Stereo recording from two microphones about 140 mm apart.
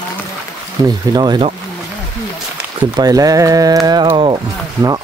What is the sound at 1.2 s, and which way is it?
Speech, 30° right (ahead or behind).